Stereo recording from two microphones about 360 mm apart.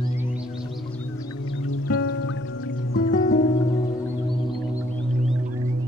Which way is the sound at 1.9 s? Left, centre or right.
Left.